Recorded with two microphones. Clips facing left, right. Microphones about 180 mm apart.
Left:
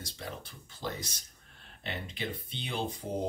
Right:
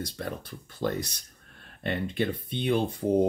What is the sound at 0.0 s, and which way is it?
Speech, 55° right (ahead or behind).